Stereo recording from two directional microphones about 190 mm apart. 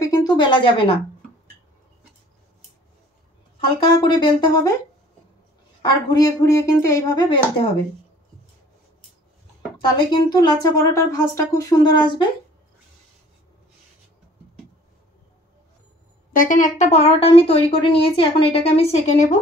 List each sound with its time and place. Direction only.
0.0 s speech: 20° left (ahead or behind)
4.0 s speech: 25° left (ahead or behind)
5.8 s speech: 20° left (ahead or behind)
9.8 s speech: 25° left (ahead or behind)
16.3 s speech: 45° left (ahead or behind)